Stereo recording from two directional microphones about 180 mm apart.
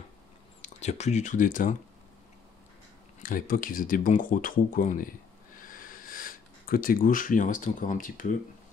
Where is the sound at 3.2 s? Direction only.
50° left (ahead or behind).